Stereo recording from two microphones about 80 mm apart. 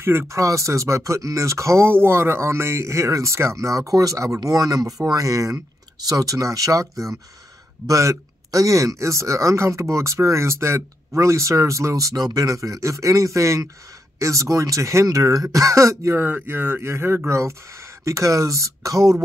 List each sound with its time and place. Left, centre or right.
0.0 s speech: right
16.3 s speech: right